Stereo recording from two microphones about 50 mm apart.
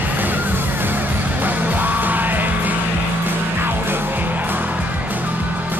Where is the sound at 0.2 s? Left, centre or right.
Right.